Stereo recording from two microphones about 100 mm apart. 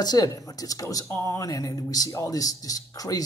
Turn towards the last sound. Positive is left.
turn(degrees=35)  # may be behind; listen again after turning